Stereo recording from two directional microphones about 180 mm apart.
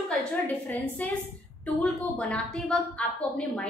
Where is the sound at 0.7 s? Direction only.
10° left (ahead or behind).